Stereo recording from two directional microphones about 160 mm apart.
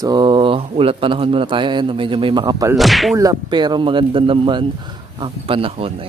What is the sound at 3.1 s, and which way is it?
A man's voice, 25° right (ahead or behind).